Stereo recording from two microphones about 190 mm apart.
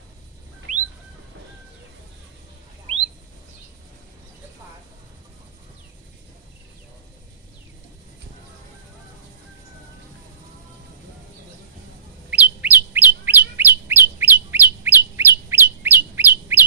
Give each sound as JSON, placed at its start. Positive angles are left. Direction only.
{"t": 0.7, "sound": "bird", "side_deg": -40}
{"t": 12.3, "sound": "bird", "side_deg": -10}